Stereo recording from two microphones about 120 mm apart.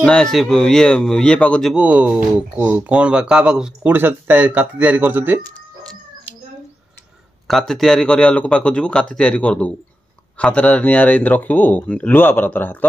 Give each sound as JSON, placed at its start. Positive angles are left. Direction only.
{"t": 0.0, "sound": "speech", "side_deg": 5}
{"t": 1.8, "sound": "speech", "side_deg": -10}
{"t": 6.3, "sound": "cat", "side_deg": -15}
{"t": 7.4, "sound": "speech", "side_deg": 5}